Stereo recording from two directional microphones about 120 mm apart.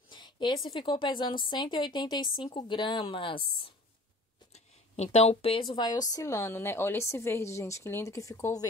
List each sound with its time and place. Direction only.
0.1 s a sound: 40° left (ahead or behind)
0.7 s a woman's voice: 40° left (ahead or behind)
4.9 s a woman's voice: 65° left (ahead or behind); by 8.6 s 25° left (ahead or behind)